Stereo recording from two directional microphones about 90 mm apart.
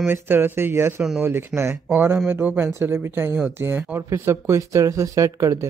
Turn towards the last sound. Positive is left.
turn(degrees=-35)  # may be behind; listen again after turning